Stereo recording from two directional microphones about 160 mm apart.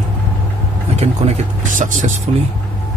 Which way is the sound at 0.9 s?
45° right (ahead or behind).